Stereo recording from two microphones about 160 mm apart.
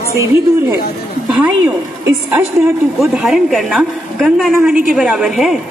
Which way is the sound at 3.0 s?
Centre (ahead or behind).